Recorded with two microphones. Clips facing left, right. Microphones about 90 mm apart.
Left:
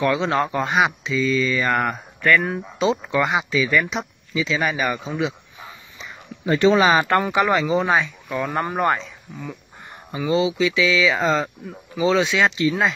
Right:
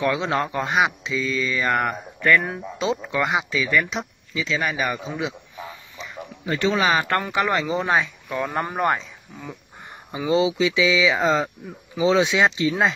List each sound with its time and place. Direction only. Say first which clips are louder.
0.0 s speech: left 2 dB; centre (ahead or behind)
6.4 s speech: left 5 dB; 35° left (ahead or behind)
7.1 s speech: left 4 dB; 15° left (ahead or behind)
10.1 s speech: even; 20° right (ahead or behind)